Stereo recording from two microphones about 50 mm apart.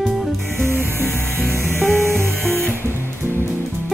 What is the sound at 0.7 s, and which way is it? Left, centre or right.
Music, right.